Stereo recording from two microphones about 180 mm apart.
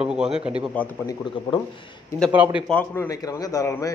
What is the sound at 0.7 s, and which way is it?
Speech, 10° left (ahead or behind).